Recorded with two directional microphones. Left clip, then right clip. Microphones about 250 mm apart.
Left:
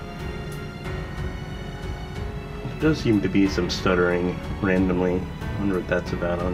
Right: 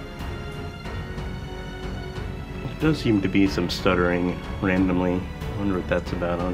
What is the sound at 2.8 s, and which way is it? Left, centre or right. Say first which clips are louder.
Speech: left 1 dB; right.